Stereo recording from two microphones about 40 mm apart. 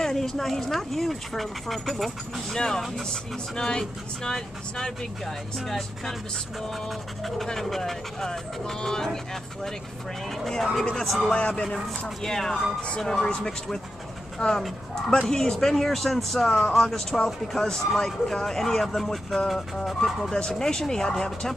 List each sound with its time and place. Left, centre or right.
0.0 s speech: centre
2.5 s speech: centre
11.3 s speech: left
12.2 s speech: centre
14.4 s speech: left
16.4 s speech: centre